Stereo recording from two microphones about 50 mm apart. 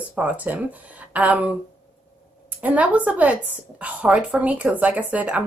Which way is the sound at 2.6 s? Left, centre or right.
Right.